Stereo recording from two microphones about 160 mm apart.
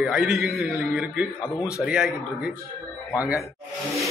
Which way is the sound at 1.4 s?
20° left (ahead or behind).